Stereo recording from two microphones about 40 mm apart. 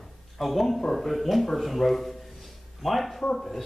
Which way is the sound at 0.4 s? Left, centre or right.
Centre.